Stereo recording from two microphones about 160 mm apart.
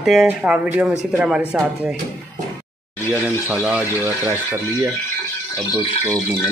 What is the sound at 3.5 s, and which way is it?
Speech, 10° right (ahead or behind).